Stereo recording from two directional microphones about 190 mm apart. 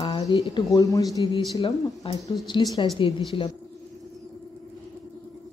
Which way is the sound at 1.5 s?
30° left (ahead or behind).